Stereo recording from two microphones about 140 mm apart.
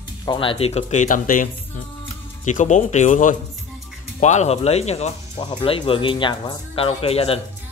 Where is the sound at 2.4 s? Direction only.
60° left (ahead or behind).